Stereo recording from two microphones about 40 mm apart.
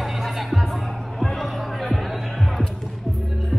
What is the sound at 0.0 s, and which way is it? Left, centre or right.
Music, centre.